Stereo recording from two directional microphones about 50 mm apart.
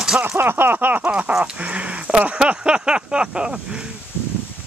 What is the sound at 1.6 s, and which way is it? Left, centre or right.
Speech, right.